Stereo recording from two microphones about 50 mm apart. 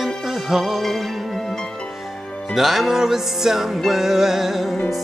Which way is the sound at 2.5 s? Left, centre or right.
Centre.